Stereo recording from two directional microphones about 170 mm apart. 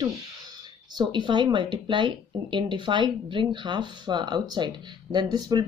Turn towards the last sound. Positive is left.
turn(degrees=-25)  # may be behind; listen again after turning